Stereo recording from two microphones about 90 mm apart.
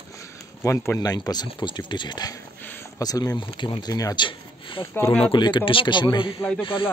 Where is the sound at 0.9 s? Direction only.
45° left (ahead or behind).